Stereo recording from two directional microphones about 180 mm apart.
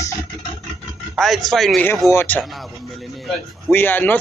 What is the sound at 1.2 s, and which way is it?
A man's voice, centre (ahead or behind).